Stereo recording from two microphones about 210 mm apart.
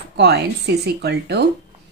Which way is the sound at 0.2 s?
55° right (ahead or behind).